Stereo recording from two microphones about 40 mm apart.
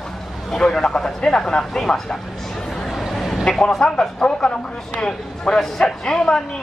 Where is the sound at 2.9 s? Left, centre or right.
Centre.